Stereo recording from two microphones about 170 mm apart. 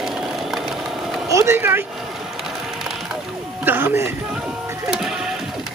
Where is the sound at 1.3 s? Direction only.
15° right (ahead or behind).